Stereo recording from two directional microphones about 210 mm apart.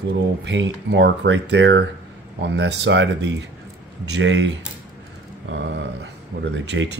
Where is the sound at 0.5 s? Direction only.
60° right (ahead or behind).